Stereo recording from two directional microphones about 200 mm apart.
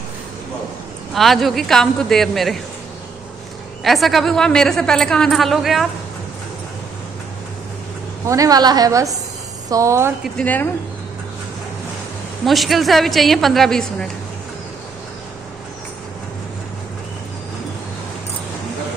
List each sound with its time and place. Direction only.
1.1 s speech: centre (ahead or behind)
3.8 s speech: centre (ahead or behind)
8.3 s a woman's voice: 15° right (ahead or behind)
10.3 s speech: 10° left (ahead or behind)
12.4 s speech: centre (ahead or behind)